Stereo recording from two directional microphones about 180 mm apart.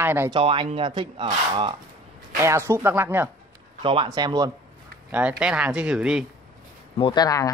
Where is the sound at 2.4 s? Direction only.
15° right (ahead or behind).